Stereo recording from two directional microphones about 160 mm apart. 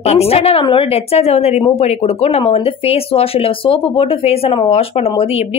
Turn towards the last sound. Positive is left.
turn(degrees=40)  # may be behind; listen again after turning